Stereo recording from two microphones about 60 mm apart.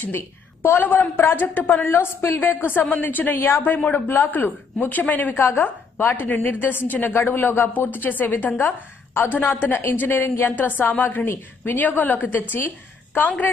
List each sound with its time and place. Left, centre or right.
0.0 s a woman's voice: left